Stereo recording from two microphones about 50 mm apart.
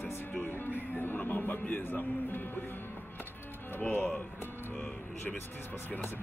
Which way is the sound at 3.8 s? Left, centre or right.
Left.